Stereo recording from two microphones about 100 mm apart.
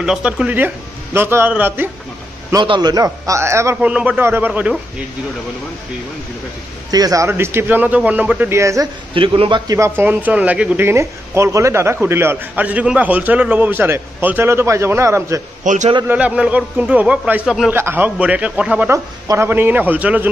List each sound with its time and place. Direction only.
0.0 s a man's voice: 10° right (ahead or behind)
2.6 s a man's voice: 55° right (ahead or behind)
2.9 s a man's voice: 35° right (ahead or behind)
3.8 s a man's voice: 15° right (ahead or behind)
6.9 s speech: 40° right (ahead or behind)
7.2 s a man's voice: 25° right (ahead or behind)
8.5 s speech: 30° right (ahead or behind)
9.1 s a man's voice: 60° right (ahead or behind)
9.7 s a man's voice: 30° right (ahead or behind); by 10.8 s 10° right (ahead or behind)
10.8 s a man's voice: 25° right (ahead or behind)
16.1 s a man's voice: 10° right (ahead or behind)
17.6 s a man's voice: 20° right (ahead or behind)
18.9 s a man's voice: 25° right (ahead or behind)